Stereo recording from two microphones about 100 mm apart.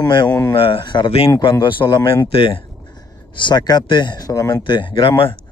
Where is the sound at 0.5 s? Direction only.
60° left (ahead or behind); by 2.3 s 45° left (ahead or behind).